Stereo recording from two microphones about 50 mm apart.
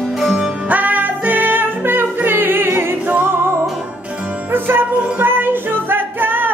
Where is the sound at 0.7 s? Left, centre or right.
Right.